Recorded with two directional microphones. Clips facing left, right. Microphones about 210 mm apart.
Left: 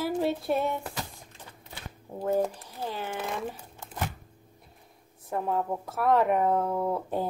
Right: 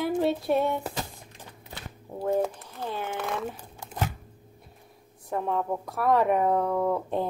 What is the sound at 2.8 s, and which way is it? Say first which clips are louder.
Speech: right 1 dB; 10° left (ahead or behind).